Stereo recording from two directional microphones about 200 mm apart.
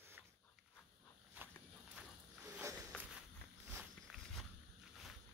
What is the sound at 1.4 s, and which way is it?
Walk, 10° right (ahead or behind).